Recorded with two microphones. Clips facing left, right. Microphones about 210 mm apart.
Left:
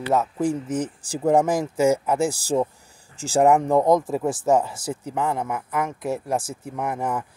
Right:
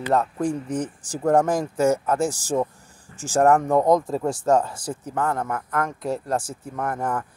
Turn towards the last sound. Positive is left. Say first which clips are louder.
# even
turn(degrees=10)  # may be behind; listen again after turning